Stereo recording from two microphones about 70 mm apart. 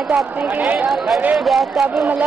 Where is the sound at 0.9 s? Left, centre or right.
Centre.